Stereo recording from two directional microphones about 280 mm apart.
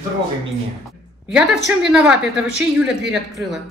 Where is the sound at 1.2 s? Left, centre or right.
Centre.